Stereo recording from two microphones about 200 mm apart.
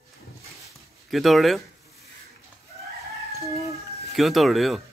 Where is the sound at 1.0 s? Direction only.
Centre (ahead or behind).